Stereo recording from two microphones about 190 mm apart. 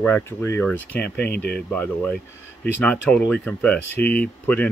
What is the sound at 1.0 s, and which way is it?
Speech, 60° left (ahead or behind).